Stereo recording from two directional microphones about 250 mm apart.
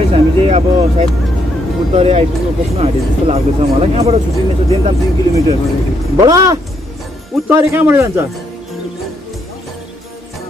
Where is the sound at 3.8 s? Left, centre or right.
Right; by 8.3 s centre.